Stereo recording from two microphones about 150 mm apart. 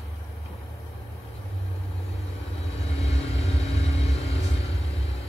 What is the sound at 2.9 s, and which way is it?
Vehicle, 40° left (ahead or behind).